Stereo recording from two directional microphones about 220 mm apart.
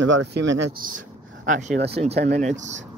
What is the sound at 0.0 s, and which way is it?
Speech, 60° right (ahead or behind).